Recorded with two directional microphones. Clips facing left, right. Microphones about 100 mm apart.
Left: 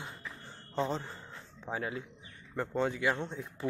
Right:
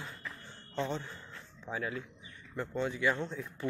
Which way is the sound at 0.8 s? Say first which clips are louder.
Left 2 dB; 35° left (ahead or behind).